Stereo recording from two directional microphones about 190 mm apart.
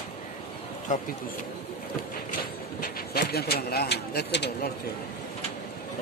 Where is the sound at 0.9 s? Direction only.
40° left (ahead or behind).